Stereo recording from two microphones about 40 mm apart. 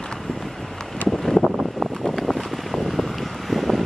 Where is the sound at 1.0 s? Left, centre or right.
Centre.